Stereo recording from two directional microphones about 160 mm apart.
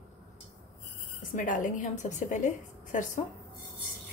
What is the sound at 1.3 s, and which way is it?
A woman's voice, 55° left (ahead or behind).